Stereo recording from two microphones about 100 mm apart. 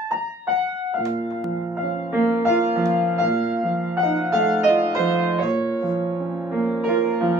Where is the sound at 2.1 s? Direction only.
15° right (ahead or behind).